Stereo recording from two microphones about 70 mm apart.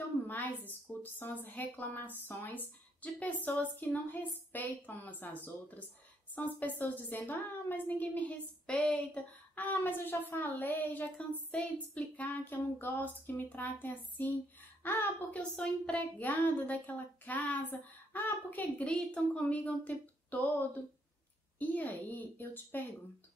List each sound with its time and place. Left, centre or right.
0.7 s a woman's voice: left
15.3 s a woman's voice: centre